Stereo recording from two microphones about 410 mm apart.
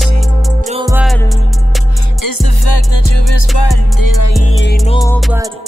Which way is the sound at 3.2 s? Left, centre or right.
Left.